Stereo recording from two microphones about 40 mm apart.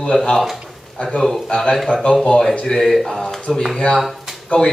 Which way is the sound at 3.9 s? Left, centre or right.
Centre.